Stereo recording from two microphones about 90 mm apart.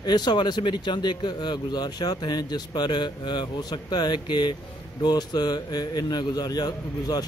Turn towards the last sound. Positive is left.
turn(degrees=45)  # may be behind; listen again after turning